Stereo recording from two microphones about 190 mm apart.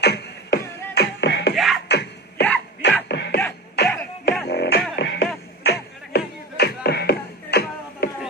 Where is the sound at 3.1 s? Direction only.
65° left (ahead or behind).